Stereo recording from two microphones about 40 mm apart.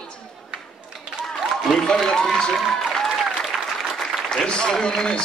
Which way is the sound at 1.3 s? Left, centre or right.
Centre.